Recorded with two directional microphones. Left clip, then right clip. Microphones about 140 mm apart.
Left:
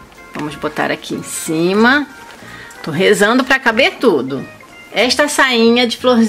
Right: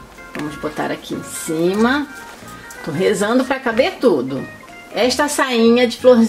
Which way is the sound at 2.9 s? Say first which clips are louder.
Left 5 dB; 35° left (ahead or behind).